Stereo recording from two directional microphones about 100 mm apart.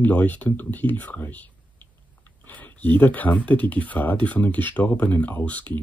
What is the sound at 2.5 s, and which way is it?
Speech, 15° left (ahead or behind).